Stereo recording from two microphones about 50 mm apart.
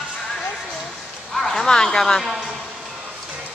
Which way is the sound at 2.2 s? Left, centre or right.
Centre.